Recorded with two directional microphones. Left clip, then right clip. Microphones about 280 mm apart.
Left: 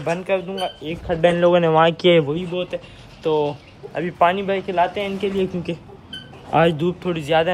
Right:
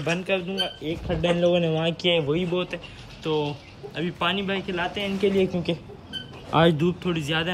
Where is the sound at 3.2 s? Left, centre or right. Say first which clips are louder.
Left 6 dB; centre.